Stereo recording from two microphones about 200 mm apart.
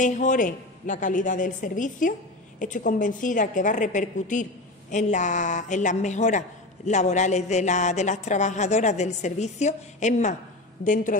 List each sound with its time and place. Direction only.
0.0 s a man's voice: 40° left (ahead or behind)